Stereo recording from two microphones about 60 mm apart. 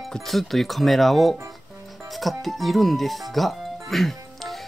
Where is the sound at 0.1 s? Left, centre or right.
Centre.